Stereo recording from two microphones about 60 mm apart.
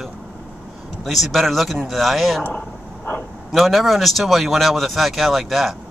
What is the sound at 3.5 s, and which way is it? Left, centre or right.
Speech, centre.